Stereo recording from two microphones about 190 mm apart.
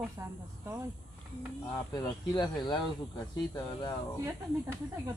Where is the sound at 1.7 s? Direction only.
20° left (ahead or behind).